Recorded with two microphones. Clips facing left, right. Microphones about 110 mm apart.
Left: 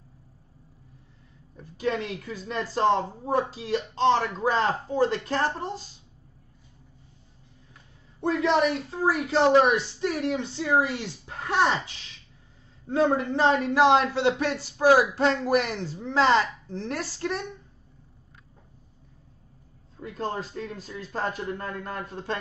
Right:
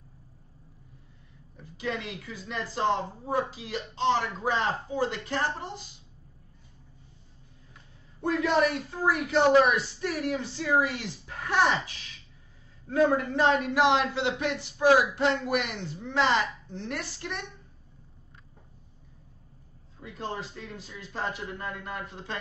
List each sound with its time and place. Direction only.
1.6 s a man's voice: 40° left (ahead or behind)
8.2 s a man's voice: 25° left (ahead or behind)
20.0 s speech: 45° left (ahead or behind)